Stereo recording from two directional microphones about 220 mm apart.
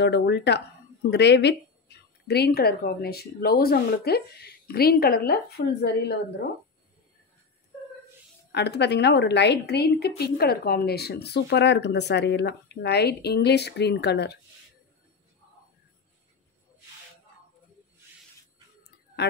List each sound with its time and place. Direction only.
0.0 s a woman's voice: 50° left (ahead or behind)
8.5 s a woman's voice: 50° left (ahead or behind)